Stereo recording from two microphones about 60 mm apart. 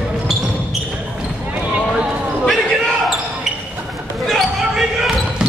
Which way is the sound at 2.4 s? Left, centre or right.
Centre.